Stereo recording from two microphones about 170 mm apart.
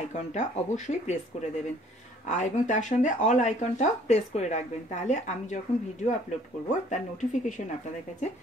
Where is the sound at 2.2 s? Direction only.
45° left (ahead or behind).